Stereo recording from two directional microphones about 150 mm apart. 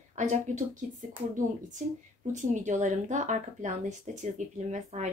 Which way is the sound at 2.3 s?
55° right (ahead or behind).